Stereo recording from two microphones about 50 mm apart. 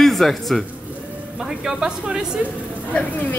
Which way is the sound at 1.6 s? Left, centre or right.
Centre.